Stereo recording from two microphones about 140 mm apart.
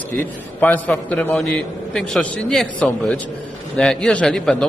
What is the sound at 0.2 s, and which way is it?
A man's voice, 10° left (ahead or behind).